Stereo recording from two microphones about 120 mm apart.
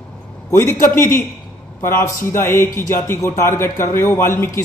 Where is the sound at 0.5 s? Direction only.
20° left (ahead or behind).